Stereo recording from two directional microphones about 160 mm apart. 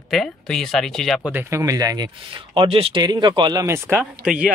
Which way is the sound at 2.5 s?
35° right (ahead or behind).